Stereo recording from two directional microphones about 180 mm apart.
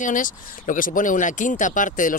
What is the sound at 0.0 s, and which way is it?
Speech, 45° left (ahead or behind).